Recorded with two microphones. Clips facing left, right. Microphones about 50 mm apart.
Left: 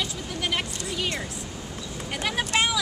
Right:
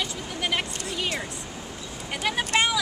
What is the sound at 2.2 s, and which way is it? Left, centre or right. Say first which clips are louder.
Speech: right 1 dB; centre.